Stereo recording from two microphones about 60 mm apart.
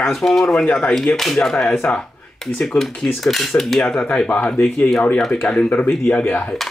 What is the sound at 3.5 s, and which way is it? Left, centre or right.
Speech, centre.